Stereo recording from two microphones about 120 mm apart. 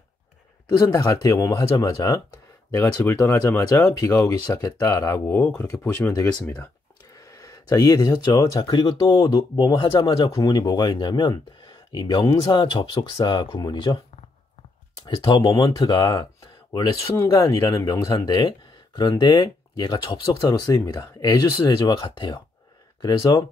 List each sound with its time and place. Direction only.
0.7 s speech: 30° left (ahead or behind)
15.0 s speech: 45° left (ahead or behind)
15.4 s speech: 30° left (ahead or behind)